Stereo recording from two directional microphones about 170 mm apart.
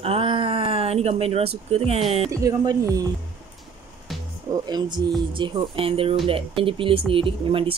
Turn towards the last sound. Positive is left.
turn(degrees=-30)  # may be behind; listen again after turning